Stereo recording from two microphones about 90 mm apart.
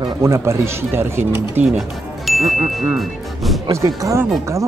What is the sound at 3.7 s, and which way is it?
Speech, 40° right (ahead or behind).